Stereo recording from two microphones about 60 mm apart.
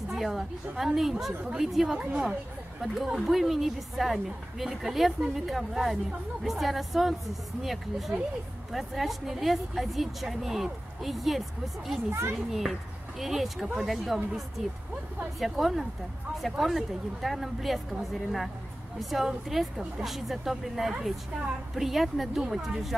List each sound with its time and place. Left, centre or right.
0.1 s a woman's voice: centre
2.0 s a woman's voice: centre
2.8 s a woman's voice: centre
12.1 s a child's voice: right
12.4 s a woman's voice: centre
18.9 s a woman's voice: centre